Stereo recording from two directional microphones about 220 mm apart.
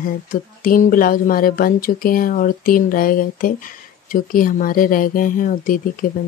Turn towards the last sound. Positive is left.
turn(degrees=40)  # may be behind; listen again after turning